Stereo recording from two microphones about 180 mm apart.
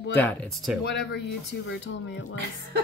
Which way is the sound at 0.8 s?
70° left (ahead or behind).